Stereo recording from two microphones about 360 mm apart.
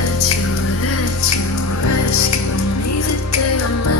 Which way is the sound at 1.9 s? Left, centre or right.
Left.